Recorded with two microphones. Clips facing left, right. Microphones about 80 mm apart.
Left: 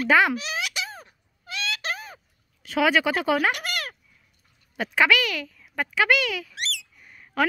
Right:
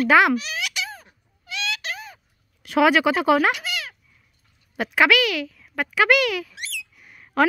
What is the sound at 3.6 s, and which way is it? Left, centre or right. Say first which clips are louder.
Cat: even; left.